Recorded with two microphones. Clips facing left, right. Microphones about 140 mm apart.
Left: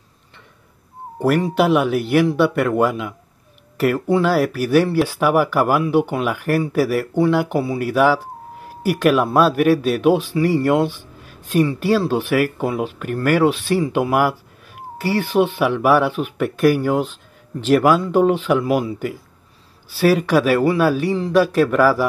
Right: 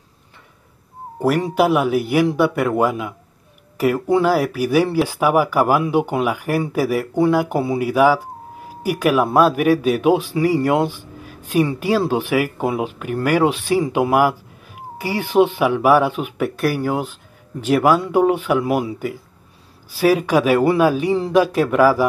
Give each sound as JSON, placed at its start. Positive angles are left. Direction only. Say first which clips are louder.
{"t": 1.5, "sound": "speech", "louder": "even", "side_deg": -5}
{"t": 12.1, "sound": "speech", "louder": "left 1 dB", "side_deg": -15}